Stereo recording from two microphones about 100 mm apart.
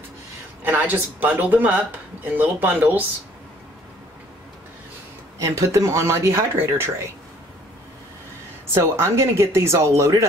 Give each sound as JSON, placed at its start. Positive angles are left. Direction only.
{"t": 0.7, "sound": "speech", "side_deg": -15}
{"t": 5.4, "sound": "speech", "side_deg": -30}
{"t": 8.7, "sound": "speech", "side_deg": -25}